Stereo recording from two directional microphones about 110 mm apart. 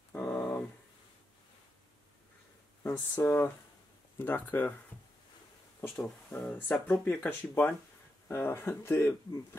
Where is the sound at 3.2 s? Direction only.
20° left (ahead or behind).